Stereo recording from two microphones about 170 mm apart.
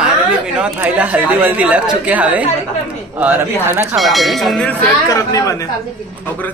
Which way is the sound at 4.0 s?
Centre (ahead or behind).